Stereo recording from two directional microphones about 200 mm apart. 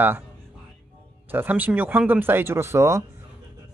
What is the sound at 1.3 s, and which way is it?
Speech, 10° right (ahead or behind).